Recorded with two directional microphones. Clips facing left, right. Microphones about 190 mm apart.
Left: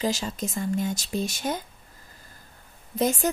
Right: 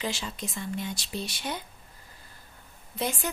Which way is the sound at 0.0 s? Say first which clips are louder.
Left 6 dB; 40° left (ahead or behind).